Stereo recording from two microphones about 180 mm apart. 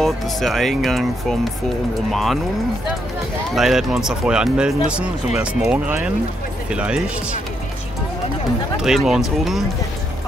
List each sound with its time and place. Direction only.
0.0 s speech: centre (ahead or behind)
3.5 s speech: centre (ahead or behind)
8.8 s speech: centre (ahead or behind)